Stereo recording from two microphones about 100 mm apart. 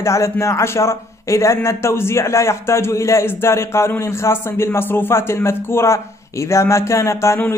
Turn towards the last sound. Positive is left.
turn(degrees=30)  # may be behind; listen again after turning